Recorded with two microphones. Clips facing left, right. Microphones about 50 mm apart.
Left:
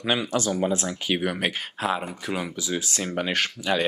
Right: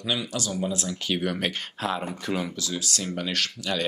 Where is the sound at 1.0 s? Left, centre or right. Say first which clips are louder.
Left 2 dB; centre.